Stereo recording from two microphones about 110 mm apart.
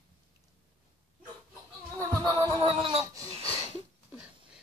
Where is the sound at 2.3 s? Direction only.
50° right (ahead or behind).